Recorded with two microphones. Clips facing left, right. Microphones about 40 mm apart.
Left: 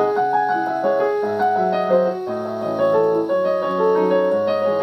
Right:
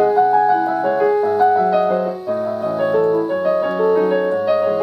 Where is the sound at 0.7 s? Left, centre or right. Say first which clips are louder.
Right 2 dB; right; by 3.3 s centre.